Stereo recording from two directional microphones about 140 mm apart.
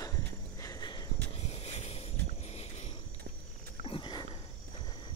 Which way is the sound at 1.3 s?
45° left (ahead or behind).